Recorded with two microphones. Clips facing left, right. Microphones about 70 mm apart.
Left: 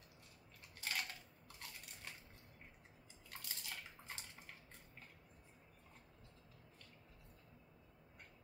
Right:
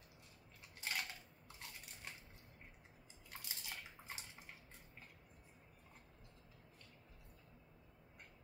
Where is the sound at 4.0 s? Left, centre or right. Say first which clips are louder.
Right 1 dB; centre.